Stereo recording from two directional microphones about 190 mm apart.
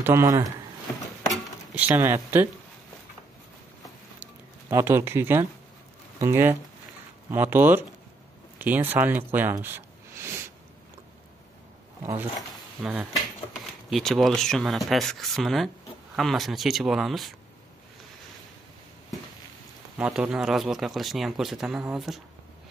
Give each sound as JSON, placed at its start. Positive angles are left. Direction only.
{"t": 0.0, "sound": "speech", "side_deg": -15}
{"t": 1.8, "sound": "speech", "side_deg": -10}
{"t": 4.2, "sound": "a sound", "side_deg": -10}
{"t": 6.1, "sound": "speech", "side_deg": -15}
{"t": 12.0, "sound": "speech", "side_deg": -15}
{"t": 20.0, "sound": "speech", "side_deg": -5}